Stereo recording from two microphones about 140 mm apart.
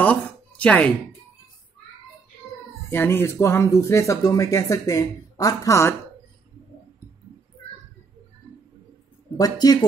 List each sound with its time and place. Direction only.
0.0 s a sound: 10° left (ahead or behind)
2.9 s speech: 15° left (ahead or behind)
9.4 s speech: 30° left (ahead or behind)